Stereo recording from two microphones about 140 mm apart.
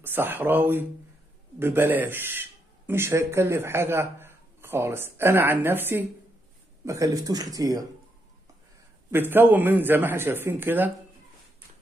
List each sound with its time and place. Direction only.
0.0 s a man's voice: 15° right (ahead or behind)
9.1 s a man's voice: 15° right (ahead or behind)